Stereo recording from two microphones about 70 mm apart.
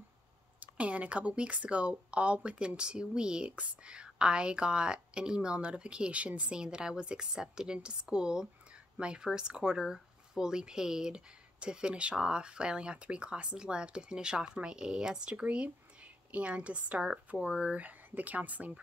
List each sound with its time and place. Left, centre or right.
0.6 s speech: centre